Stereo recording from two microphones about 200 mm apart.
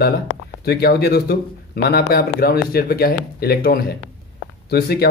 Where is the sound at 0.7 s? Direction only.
50° left (ahead or behind).